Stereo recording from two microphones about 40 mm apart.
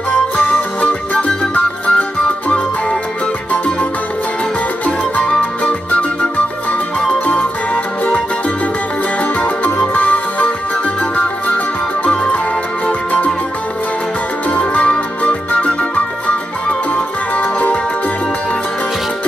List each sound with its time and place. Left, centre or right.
0.5 s music: left
4.8 s music: left
9.9 s music: left
14.5 s music: left
16.9 s music: left